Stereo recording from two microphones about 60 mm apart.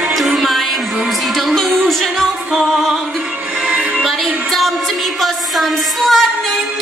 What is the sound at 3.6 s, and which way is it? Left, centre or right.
Music, centre.